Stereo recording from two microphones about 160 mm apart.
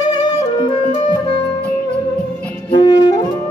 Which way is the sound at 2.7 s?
25° left (ahead or behind).